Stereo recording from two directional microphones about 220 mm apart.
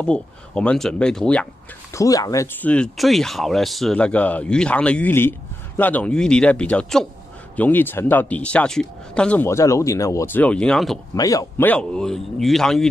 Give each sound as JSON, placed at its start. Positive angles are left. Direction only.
{"t": 0.0, "sound": "speech", "side_deg": 5}
{"t": 2.0, "sound": "speech", "side_deg": 15}
{"t": 11.1, "sound": "speech", "side_deg": 15}